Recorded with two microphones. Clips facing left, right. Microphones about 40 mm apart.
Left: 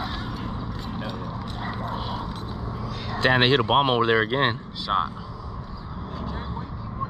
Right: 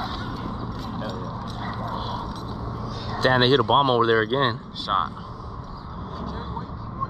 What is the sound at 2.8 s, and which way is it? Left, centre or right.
Speech, left.